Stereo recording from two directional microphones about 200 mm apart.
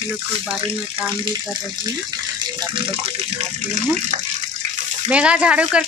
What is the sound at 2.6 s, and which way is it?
Speech, 30° right (ahead or behind).